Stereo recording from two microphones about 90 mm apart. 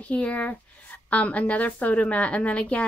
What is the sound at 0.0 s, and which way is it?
A woman's voice, 15° left (ahead or behind).